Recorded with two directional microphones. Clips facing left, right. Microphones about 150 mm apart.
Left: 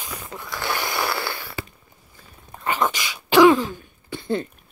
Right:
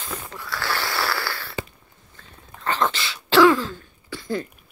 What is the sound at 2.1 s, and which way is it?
Cough, 10° left (ahead or behind).